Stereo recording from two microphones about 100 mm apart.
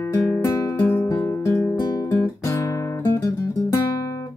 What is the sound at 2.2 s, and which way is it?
Guitar, 30° left (ahead or behind).